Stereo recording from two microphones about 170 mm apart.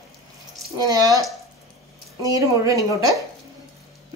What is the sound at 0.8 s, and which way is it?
Speech, 20° right (ahead or behind).